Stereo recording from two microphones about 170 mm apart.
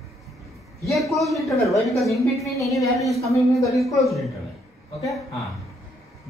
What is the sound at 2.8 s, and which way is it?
Speech, 20° left (ahead or behind).